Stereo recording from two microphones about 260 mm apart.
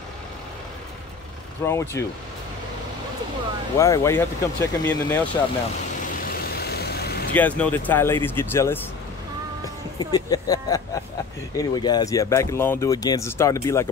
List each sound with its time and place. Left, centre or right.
1.6 s speech: centre
3.7 s speech: centre
6.5 s vehicle: left
7.3 s speech: centre
9.9 s speech: centre